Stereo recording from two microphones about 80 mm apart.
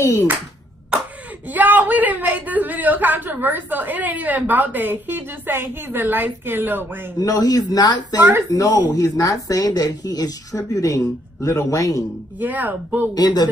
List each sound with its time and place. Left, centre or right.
0.0 s speech: left
1.5 s a man's voice: right
7.2 s a woman's voice: left
8.2 s a man's voice: right
8.5 s a woman's voice: left
12.4 s a man's voice: right
13.1 s speech: left